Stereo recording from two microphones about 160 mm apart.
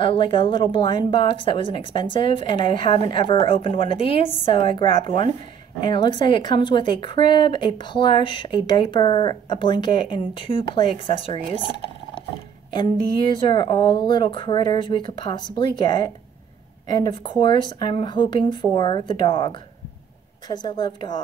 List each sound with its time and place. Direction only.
0.0 s a woman's voice: 30° left (ahead or behind)
12.7 s a woman's voice: 30° left (ahead or behind)